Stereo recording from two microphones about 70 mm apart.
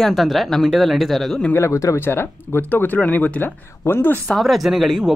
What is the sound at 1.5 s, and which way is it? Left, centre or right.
Speech, left.